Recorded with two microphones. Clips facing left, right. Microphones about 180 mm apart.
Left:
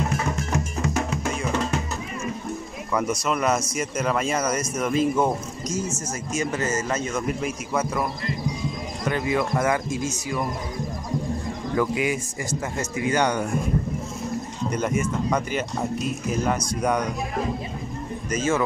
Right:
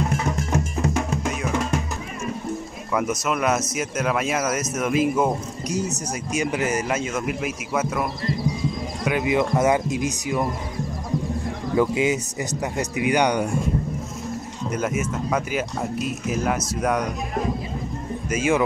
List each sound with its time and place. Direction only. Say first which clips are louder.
2.9 s speech: right 1 dB; 5° right (ahead or behind)
9.0 s speech: right 3 dB; 15° right (ahead or behind)
11.7 s speech: right 3 dB; 20° right (ahead or behind)
14.7 s speech: even; 5° right (ahead or behind)
18.3 s speech: right 2 dB; 10° right (ahead or behind)